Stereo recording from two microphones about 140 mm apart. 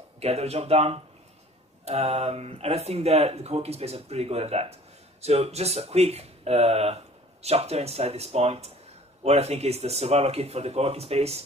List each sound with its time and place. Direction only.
0.2 s speech: 50° right (ahead or behind)